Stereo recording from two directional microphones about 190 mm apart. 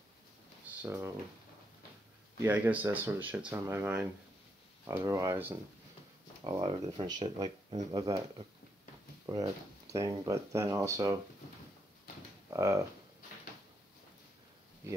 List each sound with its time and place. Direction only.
0.8 s speech: 10° right (ahead or behind)
2.4 s speech: 10° right (ahead or behind)
6.4 s speech: 25° right (ahead or behind)
12.4 s speech: 15° right (ahead or behind)